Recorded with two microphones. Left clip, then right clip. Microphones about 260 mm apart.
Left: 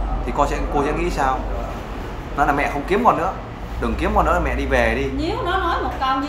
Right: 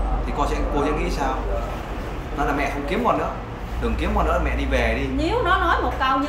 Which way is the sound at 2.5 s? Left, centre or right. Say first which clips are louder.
Left 4 dB; centre.